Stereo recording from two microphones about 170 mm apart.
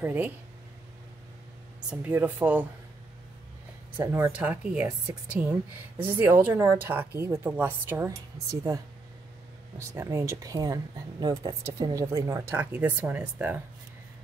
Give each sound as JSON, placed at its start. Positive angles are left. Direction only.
{"t": 0.0, "sound": "speech", "side_deg": -10}
{"t": 1.9, "sound": "speech", "side_deg": -10}
{"t": 4.0, "sound": "speech", "side_deg": -15}